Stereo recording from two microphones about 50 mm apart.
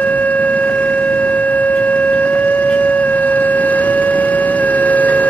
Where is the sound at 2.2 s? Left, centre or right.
Left.